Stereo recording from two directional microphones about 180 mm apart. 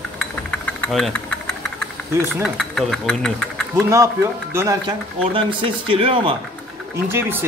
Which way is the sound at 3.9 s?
15° right (ahead or behind).